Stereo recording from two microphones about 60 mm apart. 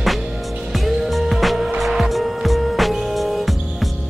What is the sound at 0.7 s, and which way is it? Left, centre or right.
Music, centre.